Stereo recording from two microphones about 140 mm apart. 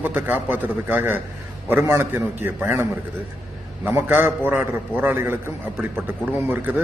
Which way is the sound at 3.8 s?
15° right (ahead or behind).